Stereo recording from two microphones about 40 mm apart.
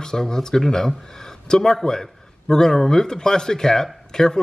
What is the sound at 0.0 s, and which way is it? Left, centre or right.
Speech, centre.